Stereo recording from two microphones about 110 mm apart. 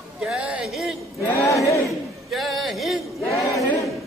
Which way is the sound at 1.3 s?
25° left (ahead or behind).